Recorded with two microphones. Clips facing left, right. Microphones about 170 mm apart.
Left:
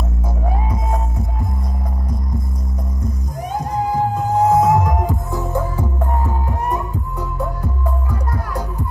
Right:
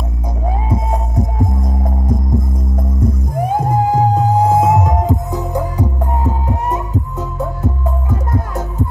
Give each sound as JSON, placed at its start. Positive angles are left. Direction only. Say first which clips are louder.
{"t": 3.0, "sound": "music", "louder": "right 10 dB", "side_deg": -55}